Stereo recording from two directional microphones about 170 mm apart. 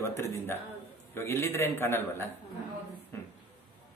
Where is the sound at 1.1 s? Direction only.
15° left (ahead or behind).